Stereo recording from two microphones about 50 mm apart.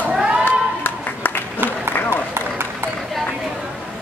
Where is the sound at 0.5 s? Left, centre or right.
Left.